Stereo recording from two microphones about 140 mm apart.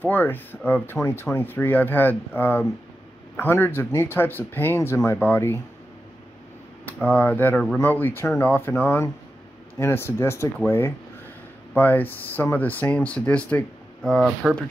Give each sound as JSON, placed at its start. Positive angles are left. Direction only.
{"t": 0.0, "sound": "speech", "side_deg": 15}
{"t": 6.9, "sound": "speech", "side_deg": 10}